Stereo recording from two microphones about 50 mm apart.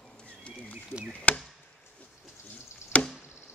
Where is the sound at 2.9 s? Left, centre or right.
Left.